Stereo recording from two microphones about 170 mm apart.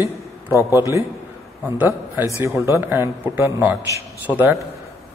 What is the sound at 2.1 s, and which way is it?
Speech, 15° right (ahead or behind).